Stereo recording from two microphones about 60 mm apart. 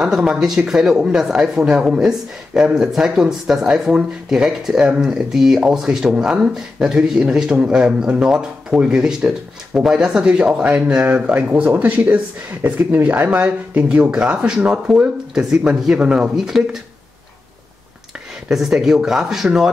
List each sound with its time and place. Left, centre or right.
0.0 s speech: centre
11.5 s speech: right; by 16.6 s centre
19.0 s speech: centre